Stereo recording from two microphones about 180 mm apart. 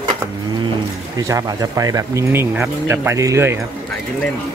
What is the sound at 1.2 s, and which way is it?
Speech, 20° right (ahead or behind).